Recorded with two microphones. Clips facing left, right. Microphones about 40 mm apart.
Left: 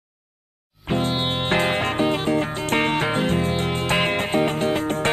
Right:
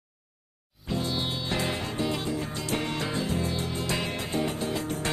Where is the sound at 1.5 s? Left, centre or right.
Left.